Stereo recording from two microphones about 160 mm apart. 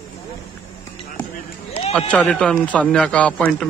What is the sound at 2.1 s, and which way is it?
A man's voice, 5° left (ahead or behind).